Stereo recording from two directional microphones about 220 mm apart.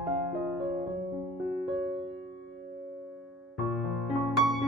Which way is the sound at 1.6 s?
Centre (ahead or behind).